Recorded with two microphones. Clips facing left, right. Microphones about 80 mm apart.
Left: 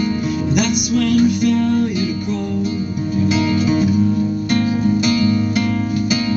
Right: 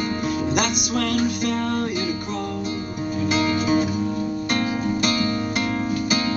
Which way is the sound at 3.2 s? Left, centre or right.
Right.